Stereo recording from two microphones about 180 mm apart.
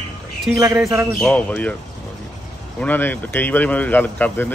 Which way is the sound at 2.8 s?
10° left (ahead or behind).